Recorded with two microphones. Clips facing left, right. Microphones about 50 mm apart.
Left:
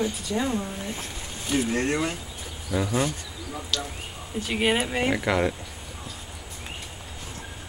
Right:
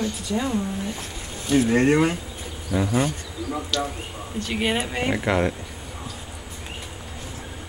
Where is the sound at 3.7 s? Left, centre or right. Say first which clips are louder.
Right 5 dB; centre.